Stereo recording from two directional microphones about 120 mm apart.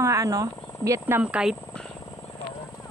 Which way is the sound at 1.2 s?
10° right (ahead or behind).